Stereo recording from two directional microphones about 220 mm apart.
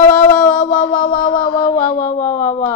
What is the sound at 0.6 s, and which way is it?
Mantra, 40° left (ahead or behind).